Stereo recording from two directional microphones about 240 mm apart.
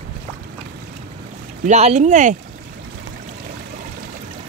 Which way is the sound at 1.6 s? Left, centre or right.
Right.